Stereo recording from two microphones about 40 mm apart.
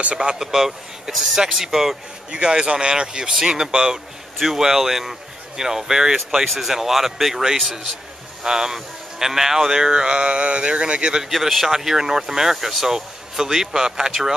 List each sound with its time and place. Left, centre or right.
0.4 s speech: centre
2.3 s speech: right
6.4 s speech: centre; by 11.2 s right
11.2 s speech: centre